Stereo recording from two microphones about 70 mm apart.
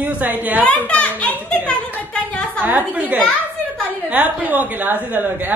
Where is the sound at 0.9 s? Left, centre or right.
Centre.